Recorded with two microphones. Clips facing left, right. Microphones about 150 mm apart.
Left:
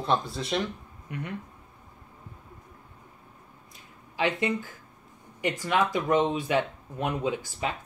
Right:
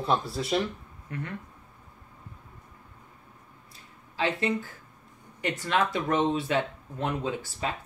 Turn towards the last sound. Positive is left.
turn(degrees=15)  # may be behind; listen again after turning